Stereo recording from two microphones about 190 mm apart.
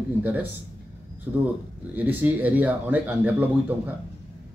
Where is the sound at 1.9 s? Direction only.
10° right (ahead or behind).